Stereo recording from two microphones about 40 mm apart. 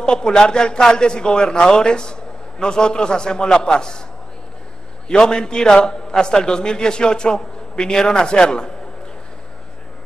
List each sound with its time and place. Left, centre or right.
0.0 s a man's voice: left
5.0 s a man's voice: left